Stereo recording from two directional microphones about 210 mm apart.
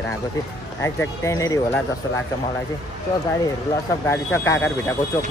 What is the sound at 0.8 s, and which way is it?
Speech, 15° left (ahead or behind).